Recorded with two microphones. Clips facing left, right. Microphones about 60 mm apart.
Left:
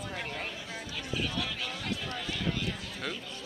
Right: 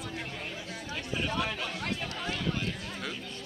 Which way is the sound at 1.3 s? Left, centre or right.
Right.